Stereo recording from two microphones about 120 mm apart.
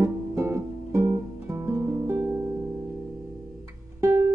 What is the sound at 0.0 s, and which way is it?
Music, 20° right (ahead or behind).